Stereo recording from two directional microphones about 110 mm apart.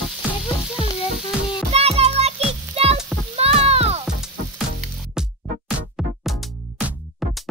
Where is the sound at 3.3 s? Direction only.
65° right (ahead or behind).